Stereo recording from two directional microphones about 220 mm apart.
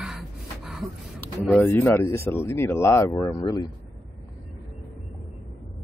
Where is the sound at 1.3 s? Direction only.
5° right (ahead or behind).